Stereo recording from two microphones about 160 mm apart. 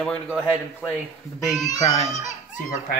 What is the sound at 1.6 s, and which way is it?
Speech, 20° left (ahead or behind).